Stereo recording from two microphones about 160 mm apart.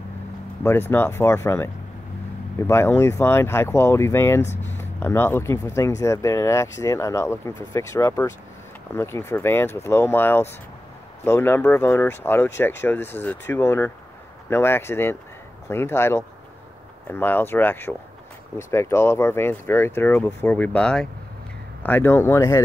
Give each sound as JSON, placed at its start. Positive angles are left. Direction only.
{"t": 0.7, "sound": "speech", "side_deg": 15}